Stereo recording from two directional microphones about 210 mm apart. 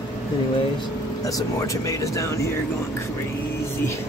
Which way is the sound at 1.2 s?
15° left (ahead or behind).